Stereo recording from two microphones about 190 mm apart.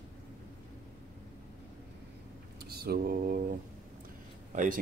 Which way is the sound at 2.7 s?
55° right (ahead or behind).